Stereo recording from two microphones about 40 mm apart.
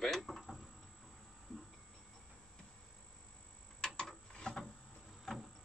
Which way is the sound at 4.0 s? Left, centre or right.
Left.